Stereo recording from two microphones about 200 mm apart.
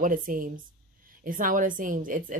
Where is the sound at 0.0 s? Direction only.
40° right (ahead or behind).